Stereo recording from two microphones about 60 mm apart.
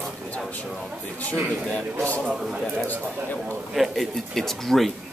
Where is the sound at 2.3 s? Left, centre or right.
Centre.